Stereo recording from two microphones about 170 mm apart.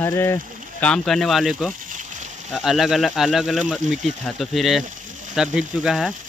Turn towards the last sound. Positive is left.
turn(degrees=0)  # may be behind; listen again after turning